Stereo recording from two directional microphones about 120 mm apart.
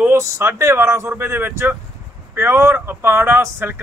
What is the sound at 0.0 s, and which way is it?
Speech, 20° right (ahead or behind).